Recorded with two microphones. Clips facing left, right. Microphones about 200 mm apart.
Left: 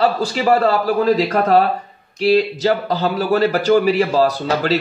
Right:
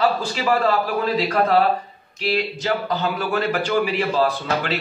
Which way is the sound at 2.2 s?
40° left (ahead or behind).